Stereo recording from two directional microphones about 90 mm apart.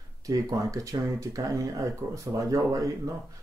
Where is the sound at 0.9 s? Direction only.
55° right (ahead or behind).